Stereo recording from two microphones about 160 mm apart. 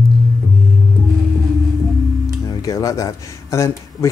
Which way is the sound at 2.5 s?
20° left (ahead or behind).